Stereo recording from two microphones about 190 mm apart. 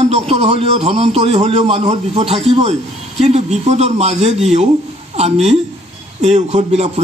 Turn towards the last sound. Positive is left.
turn(degrees=-35)  # may be behind; listen again after turning